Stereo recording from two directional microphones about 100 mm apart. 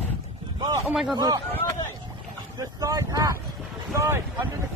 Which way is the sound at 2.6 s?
35° right (ahead or behind).